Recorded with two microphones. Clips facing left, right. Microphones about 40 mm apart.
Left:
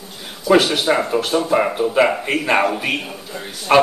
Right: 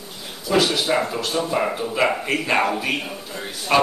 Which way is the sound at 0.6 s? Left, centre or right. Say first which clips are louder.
Left 2 dB; left.